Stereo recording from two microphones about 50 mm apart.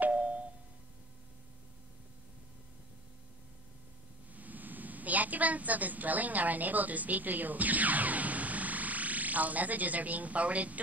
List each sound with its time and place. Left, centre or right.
0.0 s music: right
4.3 s a woman's voice: right